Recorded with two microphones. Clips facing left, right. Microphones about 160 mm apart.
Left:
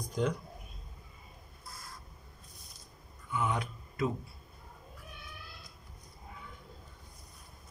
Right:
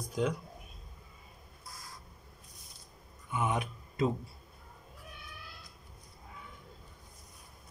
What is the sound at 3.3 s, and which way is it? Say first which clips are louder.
Speech: right 1 dB; 20° right (ahead or behind).